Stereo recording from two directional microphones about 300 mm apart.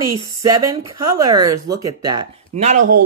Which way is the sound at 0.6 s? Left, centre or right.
Right.